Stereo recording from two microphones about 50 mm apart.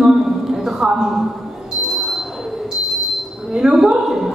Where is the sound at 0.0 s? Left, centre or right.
Centre.